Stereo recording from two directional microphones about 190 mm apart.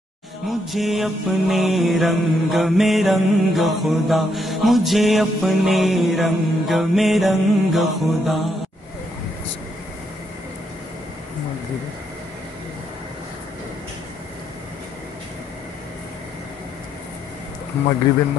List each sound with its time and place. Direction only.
0.5 s mantra: centre (ahead or behind)